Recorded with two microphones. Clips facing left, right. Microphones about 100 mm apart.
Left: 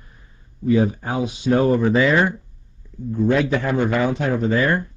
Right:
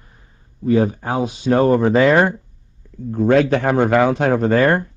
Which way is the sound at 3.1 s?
70° right (ahead or behind).